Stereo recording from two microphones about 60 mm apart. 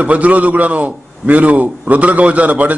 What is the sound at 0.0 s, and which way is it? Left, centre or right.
A man's voice, right.